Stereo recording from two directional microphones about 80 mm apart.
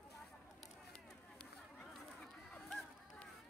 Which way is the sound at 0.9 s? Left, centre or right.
Centre.